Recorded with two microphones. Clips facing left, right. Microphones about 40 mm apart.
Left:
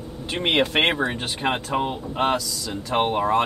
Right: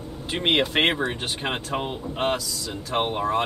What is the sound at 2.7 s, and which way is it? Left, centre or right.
Speech, left.